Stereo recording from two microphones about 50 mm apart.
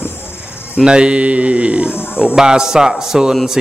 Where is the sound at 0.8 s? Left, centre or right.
Centre.